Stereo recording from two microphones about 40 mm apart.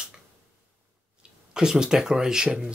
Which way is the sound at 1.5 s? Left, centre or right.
Centre.